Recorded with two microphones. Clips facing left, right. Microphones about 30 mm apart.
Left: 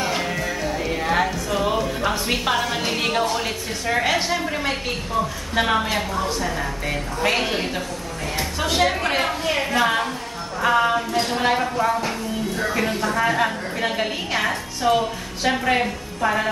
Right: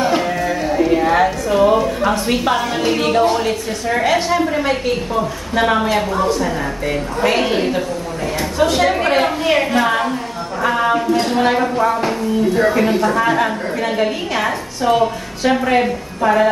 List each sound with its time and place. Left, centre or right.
0.0 s music: centre
0.8 s a woman's voice: centre
8.9 s speech: centre
9.8 s a woman's voice: centre